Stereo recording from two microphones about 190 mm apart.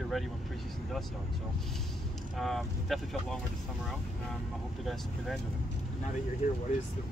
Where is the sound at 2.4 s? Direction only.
Centre (ahead or behind).